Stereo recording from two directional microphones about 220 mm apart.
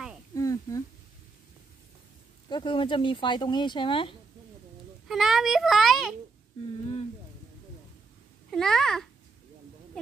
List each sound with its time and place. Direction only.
0.3 s a sound: 15° left (ahead or behind)
2.5 s speech: 20° left (ahead or behind)
5.0 s a child's voice: centre (ahead or behind)
8.5 s a child's voice: centre (ahead or behind)